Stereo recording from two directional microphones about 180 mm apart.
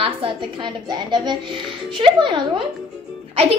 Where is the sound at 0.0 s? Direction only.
30° right (ahead or behind).